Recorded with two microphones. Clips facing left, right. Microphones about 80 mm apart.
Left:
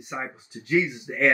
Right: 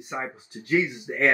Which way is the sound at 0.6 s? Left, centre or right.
Right.